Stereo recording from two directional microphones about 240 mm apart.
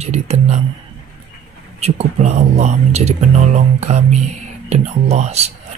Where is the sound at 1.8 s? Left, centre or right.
Right.